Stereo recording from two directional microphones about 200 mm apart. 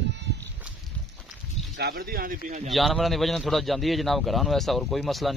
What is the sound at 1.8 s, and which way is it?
Speech, 50° right (ahead or behind).